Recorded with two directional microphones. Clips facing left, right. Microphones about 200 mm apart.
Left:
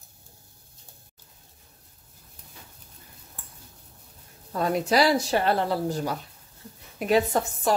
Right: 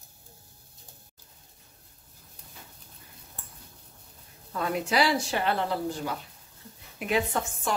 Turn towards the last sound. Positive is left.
turn(degrees=40)  # may be behind; listen again after turning